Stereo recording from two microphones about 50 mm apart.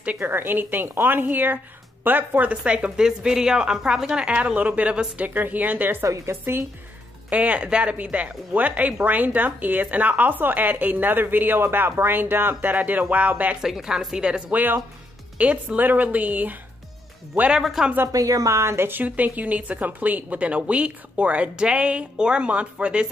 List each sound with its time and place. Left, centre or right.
0.2 s speech: right
2.5 s a woman's voice: right
4.4 s speech: right
5.3 s speech: right
7.2 s speech: right
13.6 s a woman's voice: centre
14.5 s speech: right
15.3 s speech: right
18.0 s speech: right
18.9 s speech: right